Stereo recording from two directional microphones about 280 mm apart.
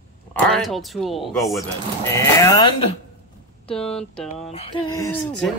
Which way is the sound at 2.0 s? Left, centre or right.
Centre.